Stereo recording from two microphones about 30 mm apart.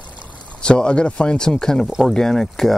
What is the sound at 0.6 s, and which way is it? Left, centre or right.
Speech, left.